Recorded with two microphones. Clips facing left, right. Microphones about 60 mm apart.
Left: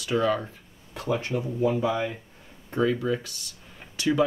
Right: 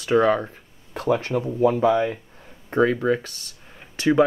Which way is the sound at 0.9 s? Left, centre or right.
Right.